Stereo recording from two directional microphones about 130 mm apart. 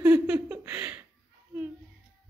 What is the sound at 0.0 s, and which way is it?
Laughter, 10° right (ahead or behind).